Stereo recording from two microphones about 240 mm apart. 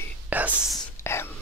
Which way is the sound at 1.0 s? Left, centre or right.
Centre.